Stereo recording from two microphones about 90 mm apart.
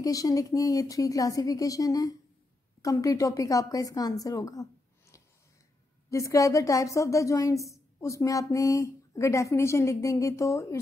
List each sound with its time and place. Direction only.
0.0 s a woman's voice: 40° left (ahead or behind)